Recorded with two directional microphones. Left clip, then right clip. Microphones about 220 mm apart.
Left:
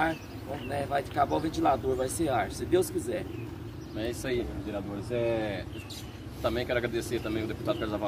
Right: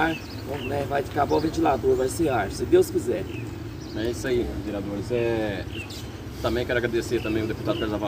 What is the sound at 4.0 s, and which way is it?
Speech, 20° left (ahead or behind).